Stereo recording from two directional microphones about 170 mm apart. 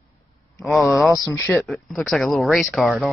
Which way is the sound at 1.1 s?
20° left (ahead or behind).